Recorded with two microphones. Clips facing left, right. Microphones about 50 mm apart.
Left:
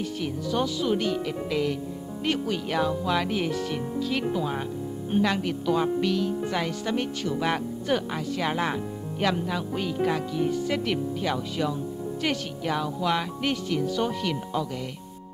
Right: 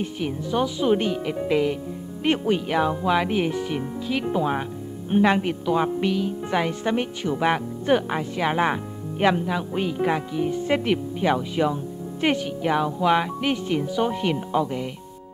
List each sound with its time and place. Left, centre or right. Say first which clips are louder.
0.0 s speech: right 2 dB; right
2.2 s speech: right 6 dB; right
2.6 s speech: right 4 dB; centre
4.3 s a woman's voice: right 4 dB; right
9.4 s a woman's voice: right 3 dB; centre